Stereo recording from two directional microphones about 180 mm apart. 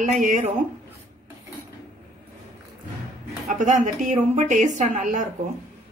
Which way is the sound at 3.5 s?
40° right (ahead or behind).